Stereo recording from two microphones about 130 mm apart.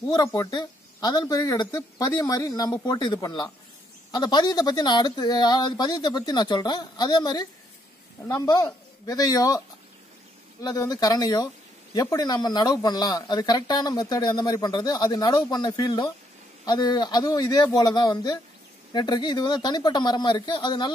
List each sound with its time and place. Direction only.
0.1 s speech: 30° left (ahead or behind)
8.5 s speech: 30° left (ahead or behind)
10.6 s speech: 30° left (ahead or behind)